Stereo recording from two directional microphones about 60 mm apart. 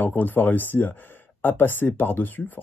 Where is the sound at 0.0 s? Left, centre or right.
Left.